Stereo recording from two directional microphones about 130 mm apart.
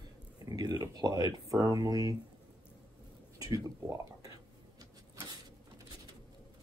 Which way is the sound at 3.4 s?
25° right (ahead or behind).